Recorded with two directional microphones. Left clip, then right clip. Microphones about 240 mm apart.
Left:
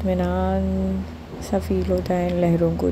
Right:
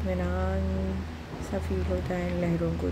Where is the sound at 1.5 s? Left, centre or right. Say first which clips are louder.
Left 10 dB; left.